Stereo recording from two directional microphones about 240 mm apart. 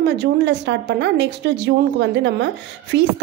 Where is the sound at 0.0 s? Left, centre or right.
Right.